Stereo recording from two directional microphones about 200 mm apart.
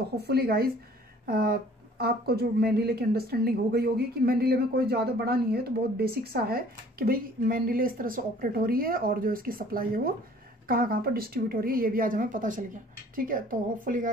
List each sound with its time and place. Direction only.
0.2 s speech: 50° right (ahead or behind)